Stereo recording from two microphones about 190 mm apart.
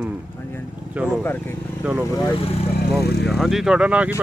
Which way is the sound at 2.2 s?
20° left (ahead or behind).